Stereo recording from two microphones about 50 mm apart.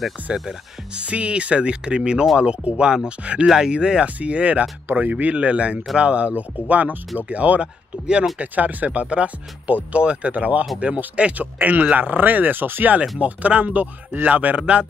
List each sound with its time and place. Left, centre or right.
0.3 s speech: centre
8.4 s speech: right
13.2 s speech: right